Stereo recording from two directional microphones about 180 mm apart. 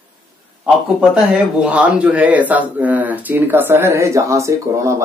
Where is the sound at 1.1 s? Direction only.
5° right (ahead or behind).